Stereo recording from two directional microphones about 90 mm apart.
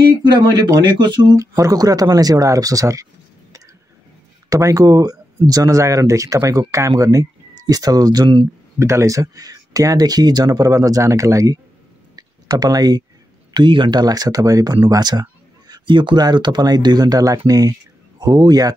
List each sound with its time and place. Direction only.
0.8 s speech: 60° right (ahead or behind)
1.3 s speech: 40° right (ahead or behind)
4.5 s speech: 40° right (ahead or behind)
8.7 s speech: 30° right (ahead or behind)
12.2 s a sound: 45° right (ahead or behind)
13.5 s speech: 60° right (ahead or behind)
15.7 s speech: 60° right (ahead or behind); by 18.8 s 45° right (ahead or behind)